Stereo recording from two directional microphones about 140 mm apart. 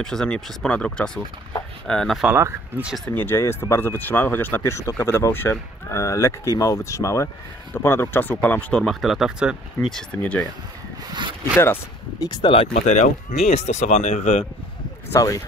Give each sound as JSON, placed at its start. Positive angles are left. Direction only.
{"t": 0.0, "sound": "speech", "side_deg": 5}
{"t": 2.2, "sound": "speech", "side_deg": -15}
{"t": 3.2, "sound": "speech", "side_deg": 15}
{"t": 11.5, "sound": "speech", "side_deg": 15}
{"t": 12.3, "sound": "speech", "side_deg": 35}
{"t": 12.7, "sound": "speech", "side_deg": 55}
{"t": 15.1, "sound": "speech", "side_deg": 25}